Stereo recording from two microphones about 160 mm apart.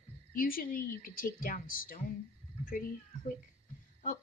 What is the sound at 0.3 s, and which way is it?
A woman's voice, 65° left (ahead or behind).